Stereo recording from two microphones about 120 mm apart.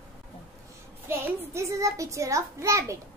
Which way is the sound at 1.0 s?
25° right (ahead or behind).